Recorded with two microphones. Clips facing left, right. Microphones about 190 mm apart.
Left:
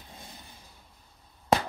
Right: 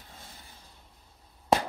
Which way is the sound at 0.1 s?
15° left (ahead or behind).